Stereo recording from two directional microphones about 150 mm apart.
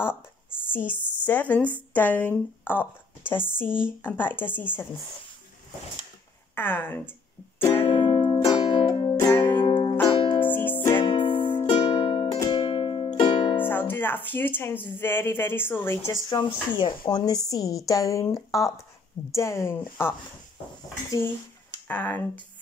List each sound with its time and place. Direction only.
0.7 s speech: 15° left (ahead or behind)
6.5 s speech: 15° left (ahead or behind)
7.5 s music: 15° left (ahead or behind)
7.8 s music: 30° left (ahead or behind)
9.1 s music: 15° left (ahead or behind)
9.4 s music: 30° left (ahead or behind)
10.5 s music: 15° left (ahead or behind)
11.0 s music: 35° left (ahead or behind)
13.7 s speech: 15° left (ahead or behind)
16.3 s a woman's voice: 30° left (ahead or behind); by 20.2 s 15° left (ahead or behind)
21.8 s speech: 10° left (ahead or behind)